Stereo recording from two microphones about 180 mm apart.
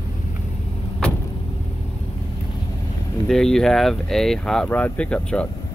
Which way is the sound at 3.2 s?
Centre (ahead or behind).